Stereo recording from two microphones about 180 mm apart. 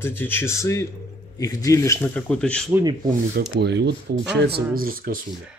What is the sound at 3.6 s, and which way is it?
Speech, 70° right (ahead or behind).